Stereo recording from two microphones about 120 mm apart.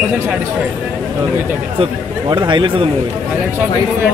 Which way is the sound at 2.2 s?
40° right (ahead or behind).